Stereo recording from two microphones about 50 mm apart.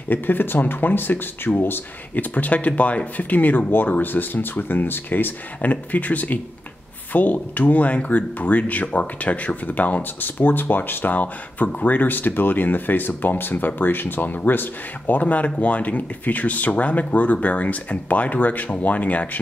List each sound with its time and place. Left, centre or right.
0.1 s speech: left
2.3 s speech: left